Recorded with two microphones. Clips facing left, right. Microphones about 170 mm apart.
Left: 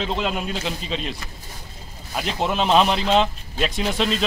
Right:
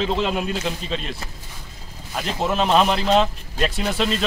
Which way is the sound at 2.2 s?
Centre (ahead or behind).